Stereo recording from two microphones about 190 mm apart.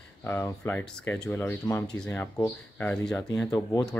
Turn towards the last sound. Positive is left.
turn(degrees=20)  # may be behind; listen again after turning